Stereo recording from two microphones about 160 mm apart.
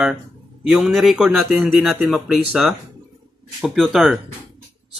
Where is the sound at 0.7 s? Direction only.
5° right (ahead or behind).